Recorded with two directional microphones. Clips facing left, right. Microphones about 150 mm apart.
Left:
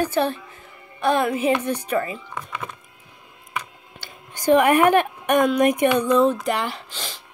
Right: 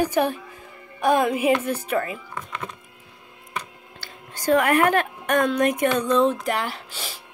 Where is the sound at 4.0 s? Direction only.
20° left (ahead or behind).